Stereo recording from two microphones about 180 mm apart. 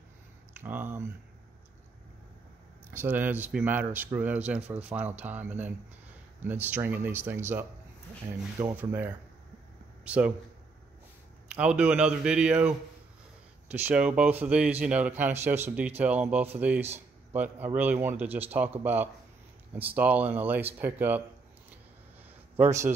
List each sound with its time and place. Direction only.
0.6 s speech: 10° right (ahead or behind)
2.9 s speech: 10° right (ahead or behind)
11.4 s a man's voice: 5° right (ahead or behind)
22.6 s speech: 15° right (ahead or behind)